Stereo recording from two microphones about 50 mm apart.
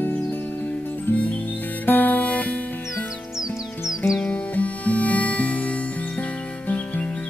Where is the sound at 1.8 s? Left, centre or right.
Left.